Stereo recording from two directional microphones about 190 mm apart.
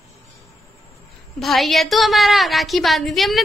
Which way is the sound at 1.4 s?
Centre (ahead or behind).